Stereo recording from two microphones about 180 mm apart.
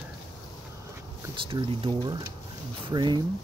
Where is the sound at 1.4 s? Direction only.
30° right (ahead or behind).